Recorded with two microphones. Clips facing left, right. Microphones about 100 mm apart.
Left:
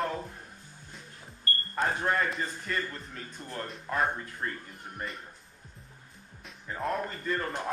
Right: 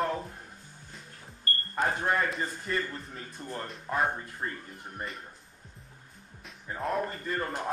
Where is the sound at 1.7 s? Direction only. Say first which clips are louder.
Even; 5° right (ahead or behind).